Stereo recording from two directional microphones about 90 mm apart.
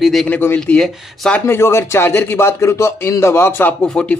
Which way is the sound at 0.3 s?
25° left (ahead or behind).